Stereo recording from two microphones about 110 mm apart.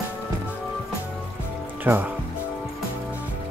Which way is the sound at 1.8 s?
15° right (ahead or behind).